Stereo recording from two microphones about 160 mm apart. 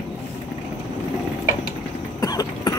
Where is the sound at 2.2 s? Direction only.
25° left (ahead or behind).